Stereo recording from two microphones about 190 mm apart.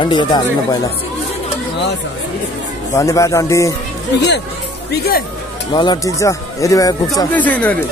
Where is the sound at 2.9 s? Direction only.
15° left (ahead or behind).